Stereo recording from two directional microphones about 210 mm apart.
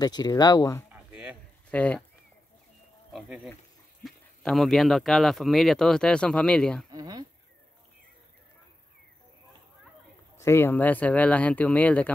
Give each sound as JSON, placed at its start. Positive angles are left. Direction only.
{"t": 0.0, "sound": "speech", "side_deg": 20}
{"t": 0.9, "sound": "a sound", "side_deg": -5}
{"t": 1.7, "sound": "speech", "side_deg": 5}
{"t": 3.1, "sound": "speech", "side_deg": 0}
{"t": 6.9, "sound": "speech", "side_deg": -20}
{"t": 10.3, "sound": "speech", "side_deg": 15}